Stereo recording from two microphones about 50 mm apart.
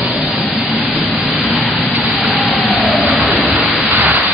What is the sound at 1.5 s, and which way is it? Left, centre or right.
Vehicle, centre.